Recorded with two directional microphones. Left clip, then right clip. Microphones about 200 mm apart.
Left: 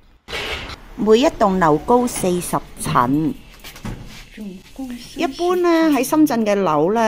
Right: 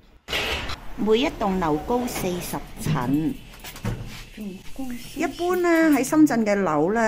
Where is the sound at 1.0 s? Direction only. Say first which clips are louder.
Left 8 dB; 35° left (ahead or behind).